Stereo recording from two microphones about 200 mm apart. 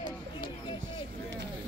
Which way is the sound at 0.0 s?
20° left (ahead or behind).